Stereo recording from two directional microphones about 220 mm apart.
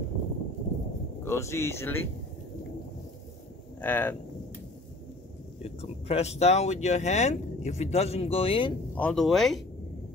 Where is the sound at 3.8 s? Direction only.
10° left (ahead or behind).